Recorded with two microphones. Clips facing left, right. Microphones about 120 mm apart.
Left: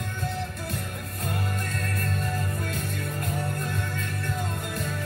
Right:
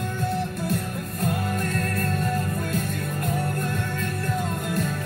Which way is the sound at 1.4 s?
50° right (ahead or behind).